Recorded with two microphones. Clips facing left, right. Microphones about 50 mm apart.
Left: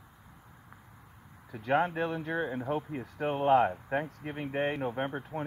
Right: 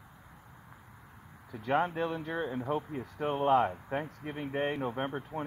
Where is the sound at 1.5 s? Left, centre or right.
Centre.